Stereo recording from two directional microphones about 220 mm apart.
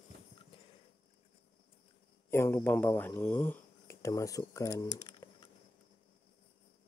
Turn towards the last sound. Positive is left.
turn(degrees=20)  # may be behind; listen again after turning